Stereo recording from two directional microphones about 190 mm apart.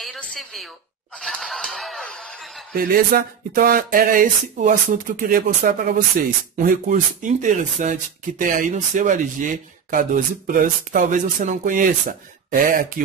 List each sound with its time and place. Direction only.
0.0 s a sound: 5° left (ahead or behind)
1.2 s speech: centre (ahead or behind)
2.7 s speech: 50° right (ahead or behind)